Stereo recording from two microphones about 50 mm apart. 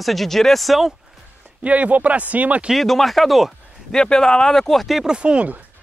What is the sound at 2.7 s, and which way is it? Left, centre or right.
Speech, centre.